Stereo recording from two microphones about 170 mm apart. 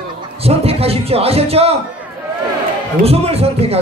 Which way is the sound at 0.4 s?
35° right (ahead or behind).